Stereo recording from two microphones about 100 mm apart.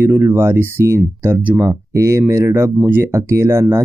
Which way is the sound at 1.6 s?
30° right (ahead or behind).